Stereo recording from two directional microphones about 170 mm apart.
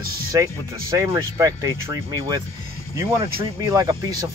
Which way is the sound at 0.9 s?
20° right (ahead or behind).